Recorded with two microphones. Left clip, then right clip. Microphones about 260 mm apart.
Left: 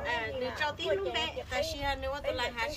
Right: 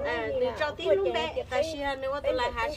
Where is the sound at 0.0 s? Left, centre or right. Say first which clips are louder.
Right 3 dB; centre.